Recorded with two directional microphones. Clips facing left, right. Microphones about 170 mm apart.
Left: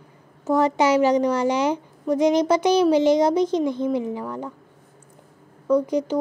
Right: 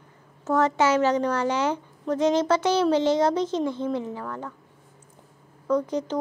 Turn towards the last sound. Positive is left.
turn(degrees=10)  # may be behind; listen again after turning